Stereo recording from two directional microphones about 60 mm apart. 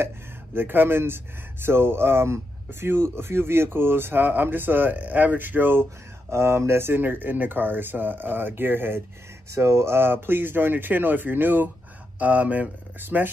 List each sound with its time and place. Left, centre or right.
0.6 s speech: right
6.3 s speech: right
9.5 s speech: right